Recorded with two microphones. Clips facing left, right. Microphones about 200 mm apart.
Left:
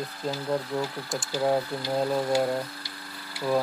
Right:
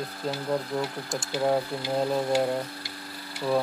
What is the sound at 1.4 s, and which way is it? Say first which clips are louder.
Speech: even; centre (ahead or behind).